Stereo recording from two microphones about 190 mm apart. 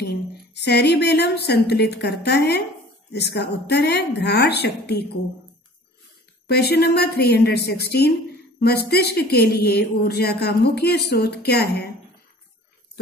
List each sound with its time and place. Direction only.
0.6 s speech: 60° left (ahead or behind)
6.4 s speech: 60° left (ahead or behind)